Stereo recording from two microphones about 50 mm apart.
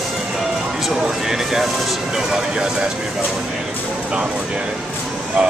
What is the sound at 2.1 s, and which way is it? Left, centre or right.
Speech, centre.